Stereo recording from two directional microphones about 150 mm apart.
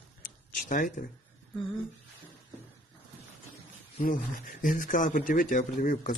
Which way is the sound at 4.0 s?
65° left (ahead or behind).